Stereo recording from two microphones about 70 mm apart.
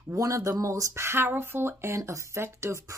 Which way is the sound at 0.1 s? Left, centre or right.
Right.